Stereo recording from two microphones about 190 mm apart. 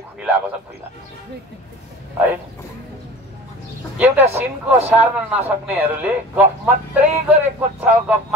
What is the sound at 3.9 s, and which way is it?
Speech, 10° right (ahead or behind).